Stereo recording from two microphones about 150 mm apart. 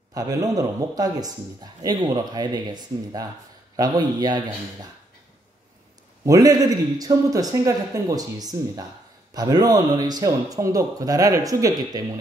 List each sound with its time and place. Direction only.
0.1 s speech: 25° right (ahead or behind)
6.2 s speech: 25° right (ahead or behind)